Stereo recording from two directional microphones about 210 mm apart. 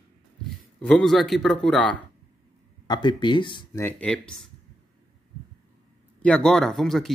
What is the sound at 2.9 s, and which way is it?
Speech, 20° left (ahead or behind).